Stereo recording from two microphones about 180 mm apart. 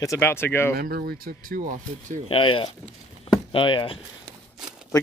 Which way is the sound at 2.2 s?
30° left (ahead or behind).